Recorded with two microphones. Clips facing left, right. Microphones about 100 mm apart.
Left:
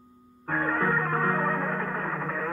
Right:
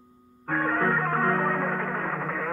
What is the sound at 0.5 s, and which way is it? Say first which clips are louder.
Music: right 1 dB; 45° right (ahead or behind).